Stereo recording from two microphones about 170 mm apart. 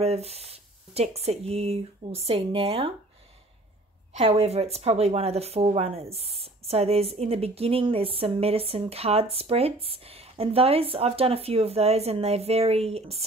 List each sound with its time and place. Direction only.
0.0 s speech: 35° right (ahead or behind)
4.1 s speech: 40° right (ahead or behind)